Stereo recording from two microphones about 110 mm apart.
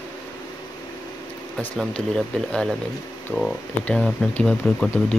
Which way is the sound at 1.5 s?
5° left (ahead or behind).